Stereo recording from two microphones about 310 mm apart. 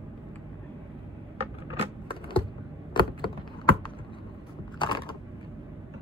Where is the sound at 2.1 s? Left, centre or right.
Centre.